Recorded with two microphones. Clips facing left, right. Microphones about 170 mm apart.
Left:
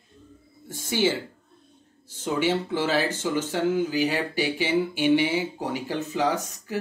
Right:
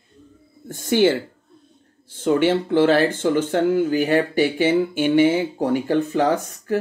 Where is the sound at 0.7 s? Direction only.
50° right (ahead or behind).